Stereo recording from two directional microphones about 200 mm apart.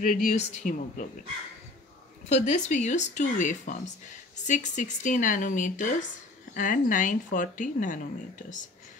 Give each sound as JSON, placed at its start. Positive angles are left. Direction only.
{"t": 0.0, "sound": "speech", "side_deg": 40}
{"t": 2.2, "sound": "speech", "side_deg": 35}